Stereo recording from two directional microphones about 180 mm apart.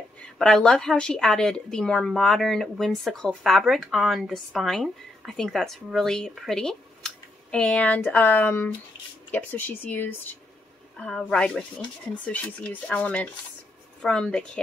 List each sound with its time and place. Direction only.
0.2 s speech: 5° left (ahead or behind)